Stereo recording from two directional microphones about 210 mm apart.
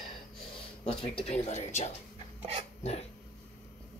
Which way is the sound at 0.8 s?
30° left (ahead or behind).